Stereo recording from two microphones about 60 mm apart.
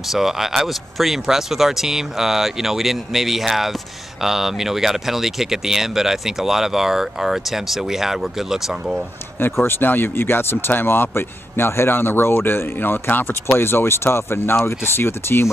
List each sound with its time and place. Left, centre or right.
0.1 s speech: centre
9.4 s speech: left